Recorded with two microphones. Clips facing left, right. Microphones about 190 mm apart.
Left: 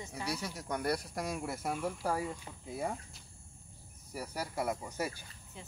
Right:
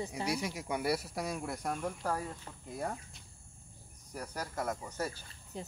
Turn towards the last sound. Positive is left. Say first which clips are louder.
# right 7 dB
turn(degrees=-40)  # may be behind; listen again after turning